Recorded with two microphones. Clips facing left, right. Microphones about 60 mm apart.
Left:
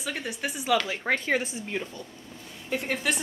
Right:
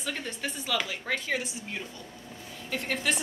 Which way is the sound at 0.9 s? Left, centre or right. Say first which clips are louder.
Left 5 dB; left.